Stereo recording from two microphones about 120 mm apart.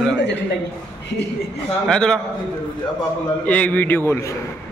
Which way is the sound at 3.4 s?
10° left (ahead or behind).